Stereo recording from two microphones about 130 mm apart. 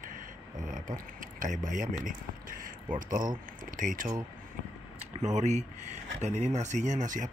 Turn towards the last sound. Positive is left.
turn(degrees=-75)  # may be behind; listen again after turning